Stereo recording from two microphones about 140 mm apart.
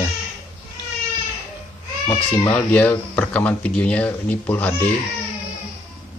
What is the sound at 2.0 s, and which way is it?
Speech, 25° left (ahead or behind).